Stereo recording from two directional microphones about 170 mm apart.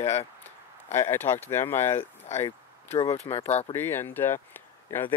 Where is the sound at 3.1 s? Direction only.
35° left (ahead or behind).